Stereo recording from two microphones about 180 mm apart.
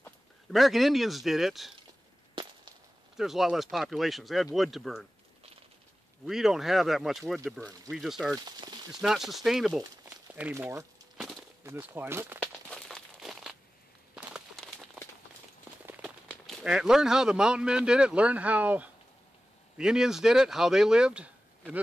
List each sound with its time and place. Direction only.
0.5 s speech: centre (ahead or behind)
3.2 s speech: centre (ahead or behind)
6.2 s speech: centre (ahead or behind)
8.5 s speech: 25° right (ahead or behind)
9.0 s speech: centre (ahead or behind)
11.1 s a sound: centre (ahead or behind)
11.6 s speech: 15° right (ahead or behind)
12.4 s crumpling: 5° left (ahead or behind)
14.1 s a sound: centre (ahead or behind)
15.8 s a man's voice: 5° right (ahead or behind)